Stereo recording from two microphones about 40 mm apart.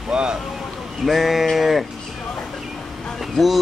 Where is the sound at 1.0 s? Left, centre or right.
Centre.